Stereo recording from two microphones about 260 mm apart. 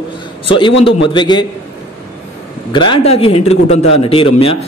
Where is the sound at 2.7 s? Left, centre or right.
Centre.